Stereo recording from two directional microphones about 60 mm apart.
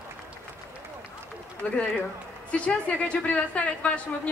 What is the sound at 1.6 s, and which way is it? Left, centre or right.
Speech, centre.